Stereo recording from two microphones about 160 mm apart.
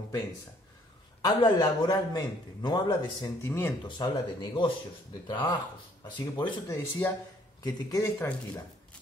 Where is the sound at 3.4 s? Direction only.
15° left (ahead or behind).